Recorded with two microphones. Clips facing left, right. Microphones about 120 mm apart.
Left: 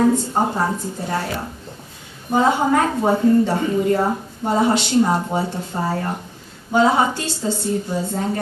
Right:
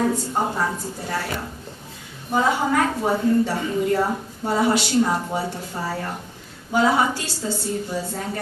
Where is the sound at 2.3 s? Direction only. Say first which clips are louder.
Left 3 dB; 25° left (ahead or behind).